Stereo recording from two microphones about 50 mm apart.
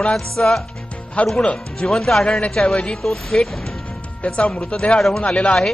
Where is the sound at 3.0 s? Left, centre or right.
Centre.